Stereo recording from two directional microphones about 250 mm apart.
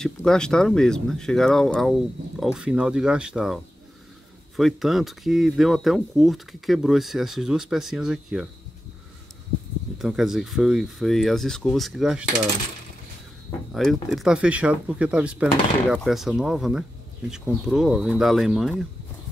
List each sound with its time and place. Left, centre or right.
0.0 s speech: centre
9.9 s speech: centre
13.7 s speech: centre